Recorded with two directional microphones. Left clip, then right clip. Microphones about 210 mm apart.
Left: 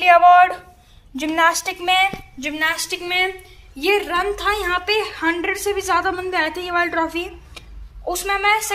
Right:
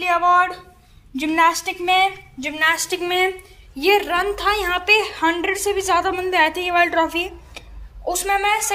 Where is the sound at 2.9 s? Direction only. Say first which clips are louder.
Right 1 dB; 25° right (ahead or behind).